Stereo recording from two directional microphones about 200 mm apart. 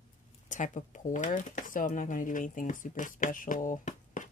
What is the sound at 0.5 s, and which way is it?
Speech, 40° left (ahead or behind).